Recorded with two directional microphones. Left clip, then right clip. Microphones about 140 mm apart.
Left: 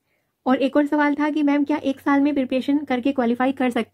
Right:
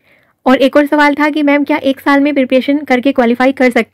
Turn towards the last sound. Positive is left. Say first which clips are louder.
# right 12 dB
turn(degrees=-25)  # may be behind; listen again after turning